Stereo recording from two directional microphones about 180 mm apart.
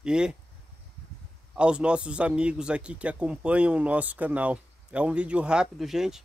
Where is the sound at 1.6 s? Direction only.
5° right (ahead or behind).